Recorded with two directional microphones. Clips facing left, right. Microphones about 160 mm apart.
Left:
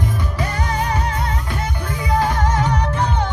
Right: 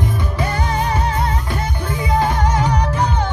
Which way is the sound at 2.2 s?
20° right (ahead or behind).